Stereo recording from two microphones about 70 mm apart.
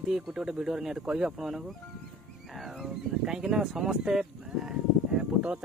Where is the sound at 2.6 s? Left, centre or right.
Centre.